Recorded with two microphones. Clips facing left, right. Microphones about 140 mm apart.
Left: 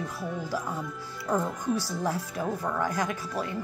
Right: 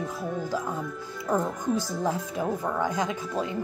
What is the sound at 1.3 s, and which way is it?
Speech, 5° right (ahead or behind).